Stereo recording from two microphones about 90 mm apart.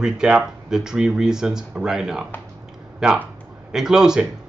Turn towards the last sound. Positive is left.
turn(degrees=-5)  # may be behind; listen again after turning